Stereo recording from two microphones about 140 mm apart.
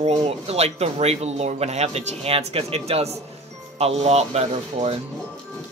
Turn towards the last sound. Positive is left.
turn(degrees=-55)  # may be behind; listen again after turning